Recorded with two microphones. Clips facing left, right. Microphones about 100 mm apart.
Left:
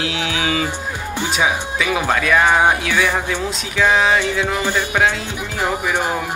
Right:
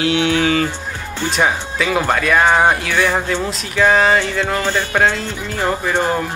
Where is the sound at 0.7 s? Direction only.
15° left (ahead or behind).